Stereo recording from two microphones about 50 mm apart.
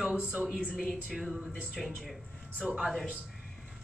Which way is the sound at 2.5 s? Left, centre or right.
Right.